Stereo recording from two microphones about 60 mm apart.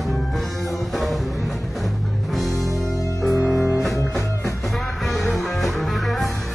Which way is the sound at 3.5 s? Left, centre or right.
Centre.